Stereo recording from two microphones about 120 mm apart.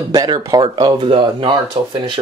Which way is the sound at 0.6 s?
40° right (ahead or behind).